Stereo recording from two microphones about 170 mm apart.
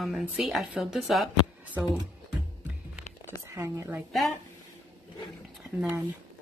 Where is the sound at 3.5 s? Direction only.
20° right (ahead or behind).